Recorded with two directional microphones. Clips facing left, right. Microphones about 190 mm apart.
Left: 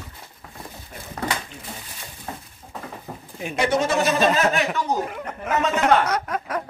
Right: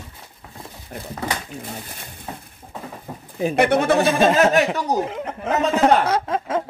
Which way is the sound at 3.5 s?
60° right (ahead or behind).